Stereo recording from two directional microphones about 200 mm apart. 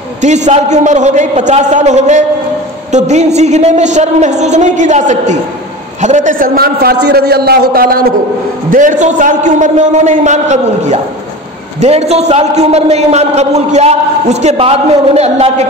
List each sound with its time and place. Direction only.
0.5 s a man's voice: 35° right (ahead or behind)